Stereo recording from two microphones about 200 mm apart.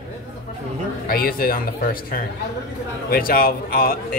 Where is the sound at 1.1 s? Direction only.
45° left (ahead or behind).